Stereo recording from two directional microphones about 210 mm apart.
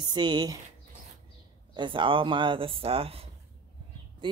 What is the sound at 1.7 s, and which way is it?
Speech, 25° right (ahead or behind).